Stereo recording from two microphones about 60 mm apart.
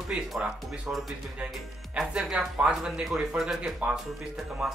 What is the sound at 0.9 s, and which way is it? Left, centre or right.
Speech, right.